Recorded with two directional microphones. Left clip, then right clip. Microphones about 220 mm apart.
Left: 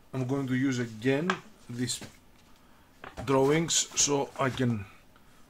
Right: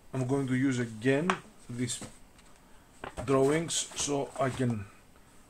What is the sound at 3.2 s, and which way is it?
Speech, 20° left (ahead or behind).